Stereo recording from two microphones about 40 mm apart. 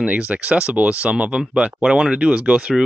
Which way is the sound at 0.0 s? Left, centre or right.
Right.